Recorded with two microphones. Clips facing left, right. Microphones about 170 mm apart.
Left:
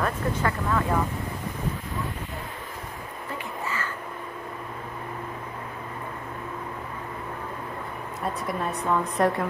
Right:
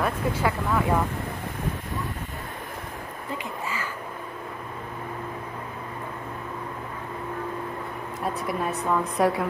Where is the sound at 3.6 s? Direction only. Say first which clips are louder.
Left 2 dB; 15° right (ahead or behind).